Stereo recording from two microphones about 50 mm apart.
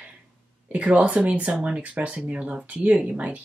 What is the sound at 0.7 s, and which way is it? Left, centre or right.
A woman's voice, right.